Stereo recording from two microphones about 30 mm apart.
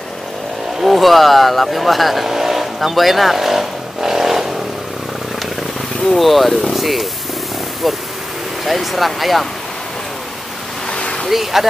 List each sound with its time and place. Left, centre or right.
0.8 s speech: centre
2.2 s speech: centre
4.1 s vehicle: centre
6.0 s speech: centre
10.9 s a sound: left
11.2 s speech: centre